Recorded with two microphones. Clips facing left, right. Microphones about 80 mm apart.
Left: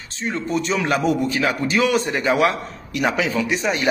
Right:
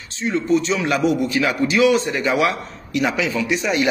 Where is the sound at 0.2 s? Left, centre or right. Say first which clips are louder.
Right 5 dB; left.